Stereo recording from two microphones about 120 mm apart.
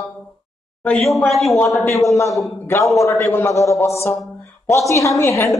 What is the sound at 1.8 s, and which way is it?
A man's voice, 25° left (ahead or behind).